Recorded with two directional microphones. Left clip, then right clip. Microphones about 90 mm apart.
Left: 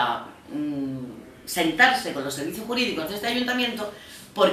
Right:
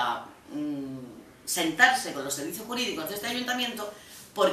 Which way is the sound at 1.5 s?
5° right (ahead or behind).